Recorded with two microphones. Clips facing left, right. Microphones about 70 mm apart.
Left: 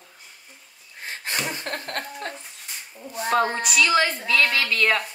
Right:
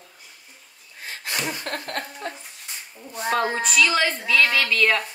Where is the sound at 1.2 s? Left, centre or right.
Left.